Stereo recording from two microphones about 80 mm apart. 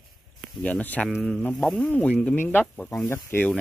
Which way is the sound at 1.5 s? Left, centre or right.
Centre.